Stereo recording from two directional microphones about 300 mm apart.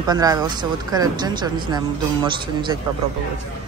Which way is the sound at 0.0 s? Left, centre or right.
Centre.